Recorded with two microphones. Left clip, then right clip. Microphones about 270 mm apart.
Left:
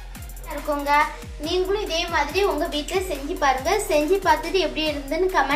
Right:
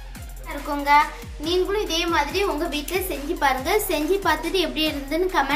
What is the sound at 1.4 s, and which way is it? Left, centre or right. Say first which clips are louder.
A woman's voice: right 1 dB; right.